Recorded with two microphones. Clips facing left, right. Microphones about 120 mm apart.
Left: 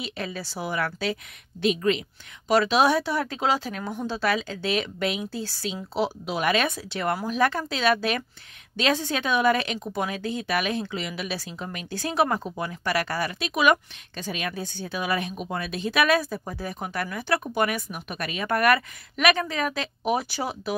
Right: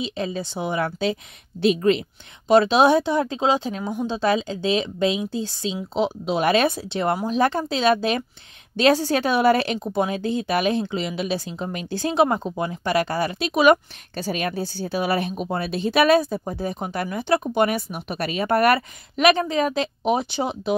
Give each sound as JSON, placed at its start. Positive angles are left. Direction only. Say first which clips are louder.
{"t": 0.0, "sound": "speech", "louder": "right 6 dB", "side_deg": -25}